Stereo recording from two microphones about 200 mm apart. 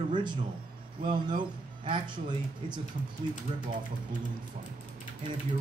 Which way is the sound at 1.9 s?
20° right (ahead or behind).